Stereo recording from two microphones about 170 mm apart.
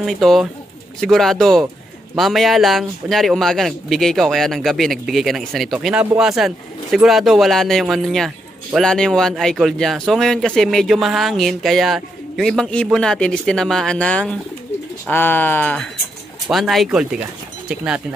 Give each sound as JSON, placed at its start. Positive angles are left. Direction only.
{"t": 0.0, "sound": "speech", "side_deg": 0}